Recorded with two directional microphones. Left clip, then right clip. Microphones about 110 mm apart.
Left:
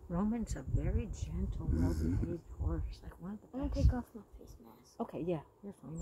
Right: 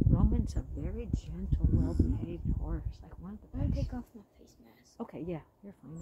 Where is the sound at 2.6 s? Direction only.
10° left (ahead or behind).